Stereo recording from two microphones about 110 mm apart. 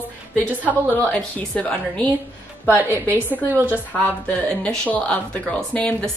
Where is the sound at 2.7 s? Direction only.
20° right (ahead or behind).